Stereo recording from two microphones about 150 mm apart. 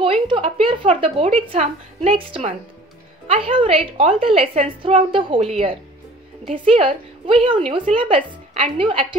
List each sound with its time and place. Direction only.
0.0 s a woman's voice: 35° right (ahead or behind)
2.1 s a woman's voice: 35° right (ahead or behind)